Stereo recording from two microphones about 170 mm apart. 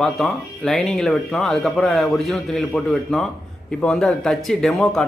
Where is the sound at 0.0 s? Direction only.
Centre (ahead or behind).